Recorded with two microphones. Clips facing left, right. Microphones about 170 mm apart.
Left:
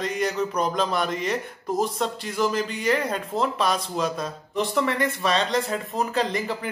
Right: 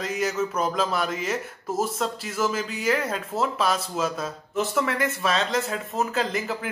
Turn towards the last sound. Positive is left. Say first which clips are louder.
# left 1 dB
turn(degrees=-5)  # may be behind; listen again after turning